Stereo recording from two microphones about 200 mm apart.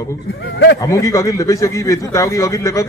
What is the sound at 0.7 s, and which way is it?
A man's voice, 15° left (ahead or behind).